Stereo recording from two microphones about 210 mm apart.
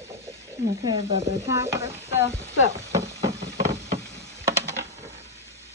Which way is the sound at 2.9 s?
15° right (ahead or behind).